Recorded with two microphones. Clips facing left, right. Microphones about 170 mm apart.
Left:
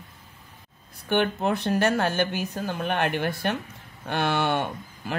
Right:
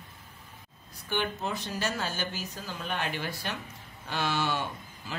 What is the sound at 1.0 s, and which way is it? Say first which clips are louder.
Speech: left 8 dB; 60° left (ahead or behind).